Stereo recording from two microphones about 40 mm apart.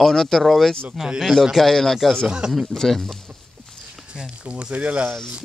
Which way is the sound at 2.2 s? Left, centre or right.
Centre.